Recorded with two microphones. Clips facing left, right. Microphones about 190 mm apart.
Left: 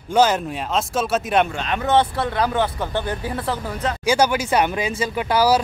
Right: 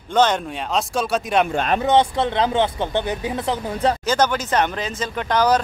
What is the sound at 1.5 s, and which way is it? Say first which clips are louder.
Speech: right 5 dB; 40° right (ahead or behind).